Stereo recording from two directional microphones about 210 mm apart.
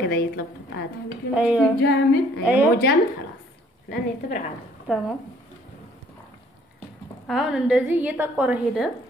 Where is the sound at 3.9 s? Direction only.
35° left (ahead or behind).